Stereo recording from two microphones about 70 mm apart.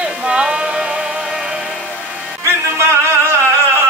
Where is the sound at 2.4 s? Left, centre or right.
Right.